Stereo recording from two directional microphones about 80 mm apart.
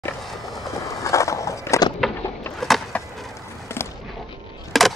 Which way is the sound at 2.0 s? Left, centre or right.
Centre.